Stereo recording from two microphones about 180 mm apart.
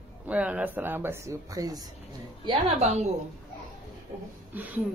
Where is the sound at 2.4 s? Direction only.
35° right (ahead or behind).